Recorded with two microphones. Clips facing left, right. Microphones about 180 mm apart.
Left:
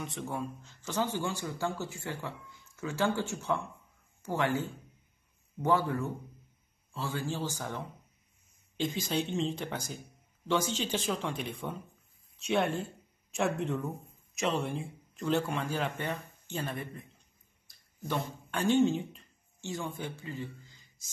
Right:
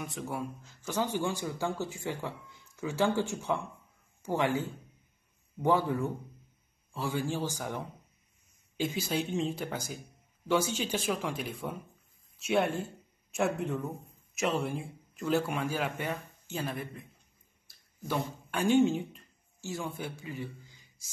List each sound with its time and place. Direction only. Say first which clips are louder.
0.0 s speech: even; 5° right (ahead or behind)
17.6 s a sound: even; 5° right (ahead or behind)
20.0 s a man's voice: even; 10° right (ahead or behind)